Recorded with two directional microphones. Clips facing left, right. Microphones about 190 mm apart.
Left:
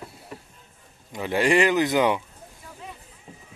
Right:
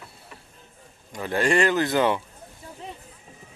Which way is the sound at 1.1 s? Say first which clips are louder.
Left 2 dB; 15° left (ahead or behind).